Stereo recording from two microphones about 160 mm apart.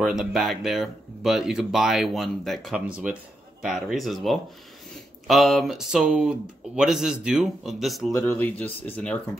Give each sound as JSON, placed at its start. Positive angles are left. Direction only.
{"t": 0.0, "sound": "speech", "side_deg": 0}
{"t": 8.1, "sound": "speech", "side_deg": 15}